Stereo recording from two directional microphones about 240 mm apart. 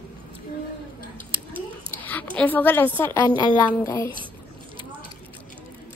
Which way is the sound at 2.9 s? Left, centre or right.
Centre.